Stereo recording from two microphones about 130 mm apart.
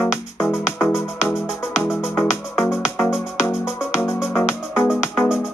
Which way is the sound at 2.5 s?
20° left (ahead or behind).